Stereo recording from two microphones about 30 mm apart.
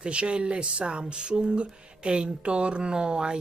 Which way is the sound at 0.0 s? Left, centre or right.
Right.